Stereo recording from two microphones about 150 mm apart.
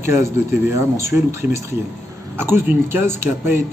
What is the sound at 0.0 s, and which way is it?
Speech, 20° right (ahead or behind).